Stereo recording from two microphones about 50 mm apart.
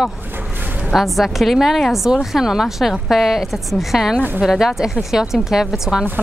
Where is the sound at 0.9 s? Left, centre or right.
Centre.